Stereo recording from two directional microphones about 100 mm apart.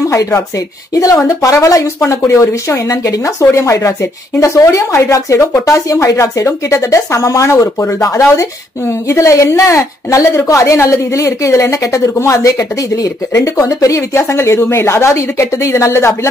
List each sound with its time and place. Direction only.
0.1 s a woman's voice: 30° left (ahead or behind)